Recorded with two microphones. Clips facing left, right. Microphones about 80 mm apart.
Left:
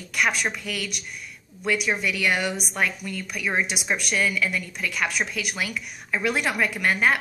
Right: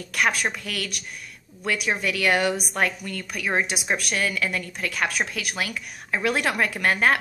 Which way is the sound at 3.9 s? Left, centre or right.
Right.